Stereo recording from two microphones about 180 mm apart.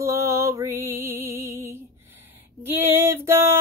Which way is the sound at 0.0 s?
15° right (ahead or behind).